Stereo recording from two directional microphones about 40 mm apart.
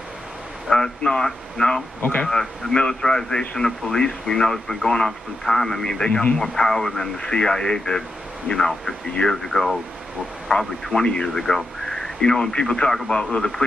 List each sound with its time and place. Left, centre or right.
0.7 s a man's voice: centre
10.5 s speech: left
11.2 s a man's voice: centre